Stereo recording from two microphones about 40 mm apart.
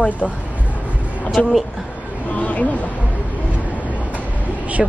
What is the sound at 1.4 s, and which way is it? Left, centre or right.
A woman's voice, left.